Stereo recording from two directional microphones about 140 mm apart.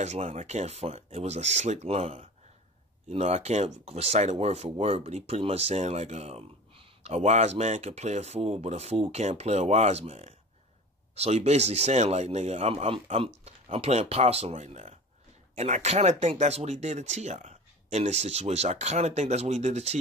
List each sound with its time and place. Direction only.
0.0 s speech: 50° right (ahead or behind)